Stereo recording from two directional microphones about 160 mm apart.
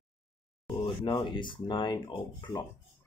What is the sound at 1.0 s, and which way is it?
Speech, 30° left (ahead or behind).